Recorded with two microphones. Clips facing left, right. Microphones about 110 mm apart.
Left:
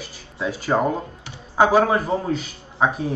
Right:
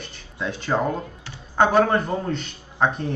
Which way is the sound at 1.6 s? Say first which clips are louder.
Left 1 dB; 5° left (ahead or behind).